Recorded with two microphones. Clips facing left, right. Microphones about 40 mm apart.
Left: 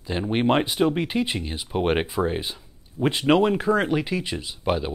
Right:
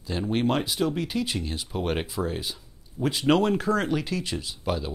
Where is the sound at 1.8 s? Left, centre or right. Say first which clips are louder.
Left 6 dB; left.